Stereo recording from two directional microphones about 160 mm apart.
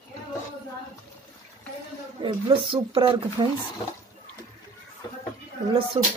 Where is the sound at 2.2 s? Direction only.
30° right (ahead or behind).